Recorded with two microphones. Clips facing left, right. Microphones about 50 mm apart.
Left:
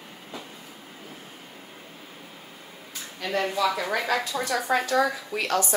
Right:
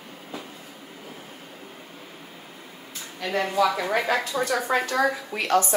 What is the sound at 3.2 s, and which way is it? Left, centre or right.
Speech, centre.